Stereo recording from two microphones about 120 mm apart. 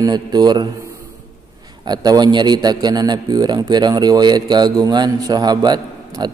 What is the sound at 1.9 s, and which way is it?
A man's voice, 35° right (ahead or behind).